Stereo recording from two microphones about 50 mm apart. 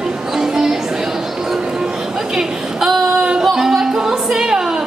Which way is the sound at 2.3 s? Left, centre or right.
Centre.